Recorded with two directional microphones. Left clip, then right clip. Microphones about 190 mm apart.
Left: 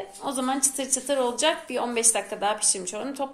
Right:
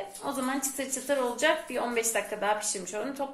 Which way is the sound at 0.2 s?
45° left (ahead or behind).